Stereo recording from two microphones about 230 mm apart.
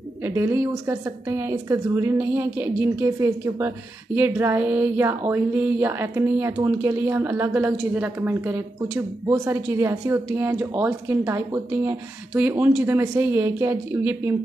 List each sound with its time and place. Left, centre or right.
0.2 s speech: centre